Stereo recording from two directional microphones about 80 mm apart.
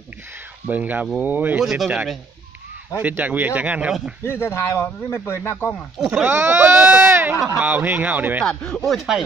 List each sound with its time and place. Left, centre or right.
0.7 s speech: right
1.6 s speech: centre
3.0 s speech: centre
4.2 s speech: left
5.9 s speech: centre
6.2 s speech: right
8.5 s speech: centre